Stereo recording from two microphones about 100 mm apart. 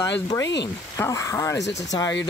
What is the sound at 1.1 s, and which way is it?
Speech, 30° left (ahead or behind).